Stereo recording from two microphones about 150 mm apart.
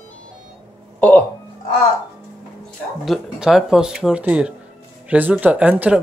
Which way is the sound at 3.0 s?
Centre (ahead or behind).